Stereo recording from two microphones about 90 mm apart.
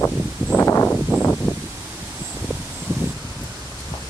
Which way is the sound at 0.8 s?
10° left (ahead or behind).